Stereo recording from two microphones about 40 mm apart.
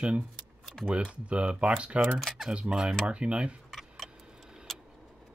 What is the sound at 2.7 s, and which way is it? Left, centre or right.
Speech, right.